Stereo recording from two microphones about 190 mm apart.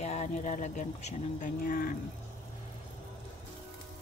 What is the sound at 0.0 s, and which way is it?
Speech, 35° left (ahead or behind).